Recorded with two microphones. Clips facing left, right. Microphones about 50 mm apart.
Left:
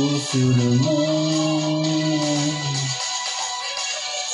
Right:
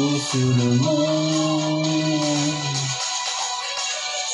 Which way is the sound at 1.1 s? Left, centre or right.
Right.